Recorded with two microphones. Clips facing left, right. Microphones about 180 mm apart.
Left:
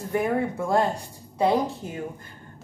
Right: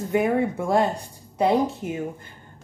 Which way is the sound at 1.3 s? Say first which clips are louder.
Right 2 dB; 20° right (ahead or behind).